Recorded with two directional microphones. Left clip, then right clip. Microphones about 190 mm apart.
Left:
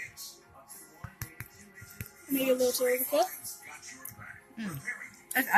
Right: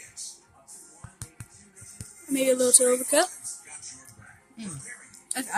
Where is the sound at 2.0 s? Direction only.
20° right (ahead or behind).